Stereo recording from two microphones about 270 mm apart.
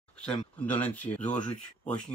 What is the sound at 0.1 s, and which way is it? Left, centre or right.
Speech, centre.